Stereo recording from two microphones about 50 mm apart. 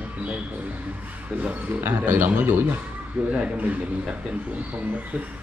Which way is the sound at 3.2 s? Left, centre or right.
Right.